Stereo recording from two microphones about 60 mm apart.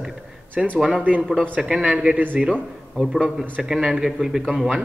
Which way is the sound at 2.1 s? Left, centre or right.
Right.